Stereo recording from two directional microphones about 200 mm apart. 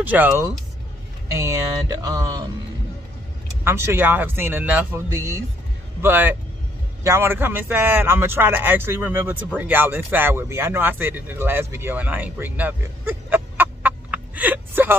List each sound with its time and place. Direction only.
0.0 s a man's voice: 10° right (ahead or behind)
3.6 s a man's voice: 15° right (ahead or behind)